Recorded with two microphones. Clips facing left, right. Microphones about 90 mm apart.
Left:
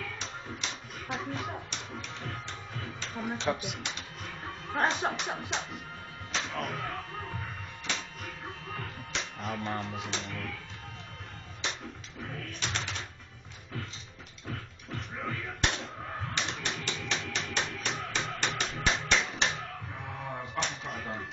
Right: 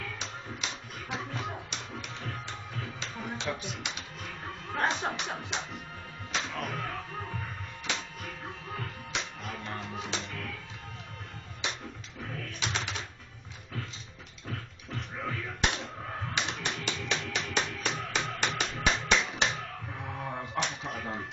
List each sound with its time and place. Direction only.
0.0 s music: 5° right (ahead or behind)
1.1 s a sound: centre (ahead or behind)
2.2 s music: centre (ahead or behind)
3.4 s speech: 10° left (ahead or behind)
4.8 s speech: centre (ahead or behind)
6.3 s music: centre (ahead or behind)
9.8 s speech: 5° left (ahead or behind)
12.5 s typing: 10° right (ahead or behind)
14.5 s music: centre (ahead or behind)
15.6 s typewriter: 5° right (ahead or behind)
16.6 s music: 10° right (ahead or behind)
20.2 s a sound: 10° right (ahead or behind)